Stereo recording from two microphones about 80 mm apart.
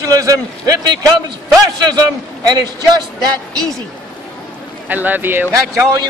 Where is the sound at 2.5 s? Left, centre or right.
Right.